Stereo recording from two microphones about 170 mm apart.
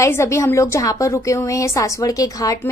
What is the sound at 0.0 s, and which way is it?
A woman's voice, 15° left (ahead or behind).